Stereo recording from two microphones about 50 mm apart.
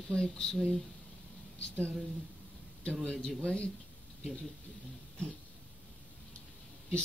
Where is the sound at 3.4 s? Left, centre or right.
Left.